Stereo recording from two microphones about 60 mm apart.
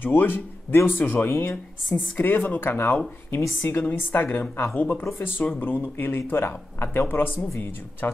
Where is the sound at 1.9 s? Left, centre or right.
Left.